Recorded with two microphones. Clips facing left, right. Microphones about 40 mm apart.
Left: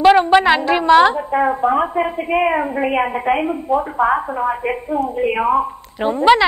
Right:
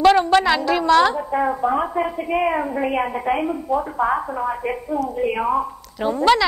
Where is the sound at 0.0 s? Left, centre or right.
Centre.